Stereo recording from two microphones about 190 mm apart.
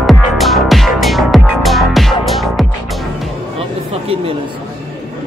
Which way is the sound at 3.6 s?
30° right (ahead or behind).